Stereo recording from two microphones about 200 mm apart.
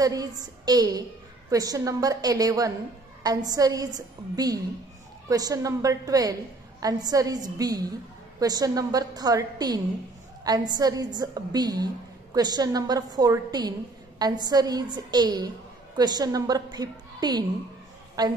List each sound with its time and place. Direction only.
0.0 s a woman's voice: 20° right (ahead or behind)
10.8 s a woman's voice: 20° right (ahead or behind)